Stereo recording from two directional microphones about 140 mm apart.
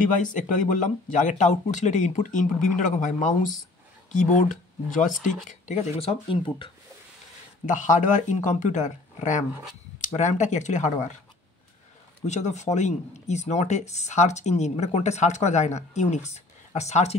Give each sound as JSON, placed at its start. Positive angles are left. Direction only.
{"t": 0.2, "sound": "speech", "side_deg": 65}
{"t": 5.9, "sound": "speech", "side_deg": 40}
{"t": 7.7, "sound": "speech", "side_deg": 65}
{"t": 12.3, "sound": "speech", "side_deg": 55}